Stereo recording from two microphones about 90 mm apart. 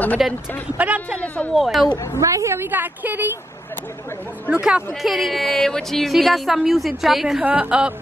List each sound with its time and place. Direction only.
0.2 s a woman's voice: 5° right (ahead or behind)
0.7 s music: 15° right (ahead or behind)
1.2 s speech: 15° left (ahead or behind)
1.5 s a woman's voice: centre (ahead or behind)
2.1 s a woman's voice: 35° right (ahead or behind); by 3.3 s 20° right (ahead or behind)
4.5 s music: 10° right (ahead or behind)
5.0 s a woman's voice: centre (ahead or behind)
7.4 s music: 15° right (ahead or behind)